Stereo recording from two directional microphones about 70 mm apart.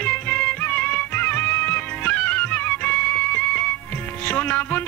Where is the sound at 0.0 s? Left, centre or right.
Left.